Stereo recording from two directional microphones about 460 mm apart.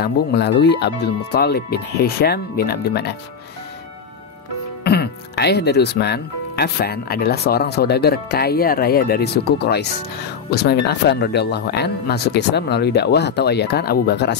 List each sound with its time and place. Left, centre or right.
0.0 s speech: left
4.8 s speech: left